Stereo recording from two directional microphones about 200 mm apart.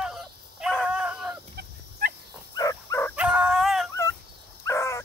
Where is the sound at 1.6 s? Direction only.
50° right (ahead or behind).